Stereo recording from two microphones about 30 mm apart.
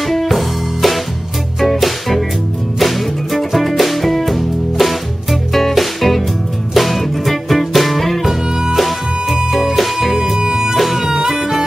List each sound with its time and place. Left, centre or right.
0.0 s music: centre
9.5 s music: centre
9.8 s music: centre
10.4 s music: right
10.8 s music: centre
11.1 s music: centre